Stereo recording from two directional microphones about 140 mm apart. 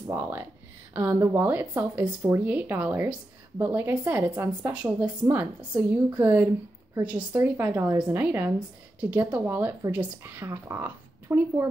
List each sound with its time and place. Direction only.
0.1 s speech: 15° right (ahead or behind)